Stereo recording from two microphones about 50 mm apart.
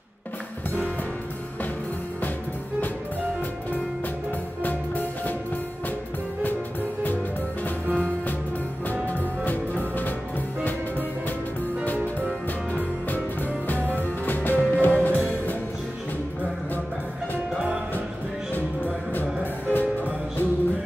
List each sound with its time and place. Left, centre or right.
4.6 s music: left
7.9 s music: left
12.7 s music: left
19.1 s music: left